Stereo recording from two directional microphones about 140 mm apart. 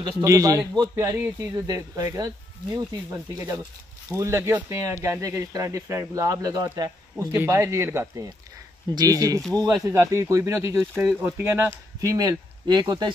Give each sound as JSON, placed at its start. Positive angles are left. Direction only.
{"t": 0.2, "sound": "speech", "side_deg": -25}
{"t": 9.4, "sound": "speech", "side_deg": 5}
{"t": 9.8, "sound": "speech", "side_deg": -20}
{"t": 11.0, "sound": "speech", "side_deg": -10}
{"t": 12.2, "sound": "speech", "side_deg": -30}